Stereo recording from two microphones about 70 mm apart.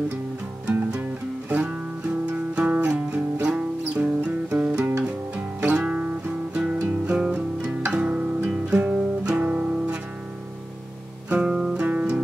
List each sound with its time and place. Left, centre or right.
1.5 s guitar: centre
3.1 s music: centre
11.2 s music: centre